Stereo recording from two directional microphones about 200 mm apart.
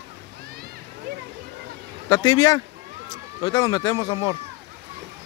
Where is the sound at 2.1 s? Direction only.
20° left (ahead or behind).